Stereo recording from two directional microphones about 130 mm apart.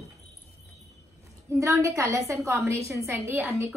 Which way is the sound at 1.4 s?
25° right (ahead or behind).